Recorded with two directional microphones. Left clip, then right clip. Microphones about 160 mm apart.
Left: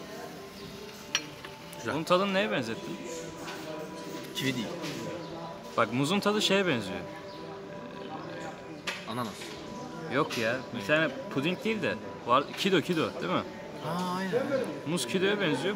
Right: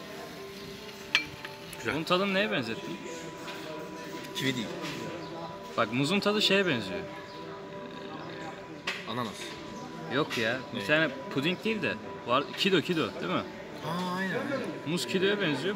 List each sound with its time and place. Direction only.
1.9 s speech: centre (ahead or behind)
4.4 s speech: centre (ahead or behind)
5.8 s speech: 5° left (ahead or behind)
10.1 s speech: 5° right (ahead or behind)